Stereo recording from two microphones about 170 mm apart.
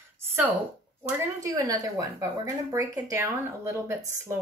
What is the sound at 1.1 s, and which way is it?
Speech, 20° right (ahead or behind).